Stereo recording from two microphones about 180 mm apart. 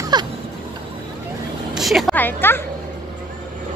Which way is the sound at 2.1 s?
10° left (ahead or behind).